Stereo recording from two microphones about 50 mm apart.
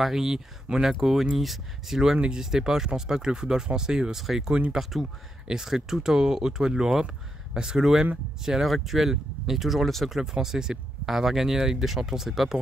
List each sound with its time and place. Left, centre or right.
0.0 s speech: centre